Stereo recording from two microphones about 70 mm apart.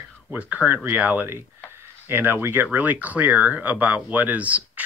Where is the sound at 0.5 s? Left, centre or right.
Right.